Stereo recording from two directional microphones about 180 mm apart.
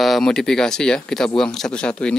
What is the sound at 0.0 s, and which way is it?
Speech, centre (ahead or behind).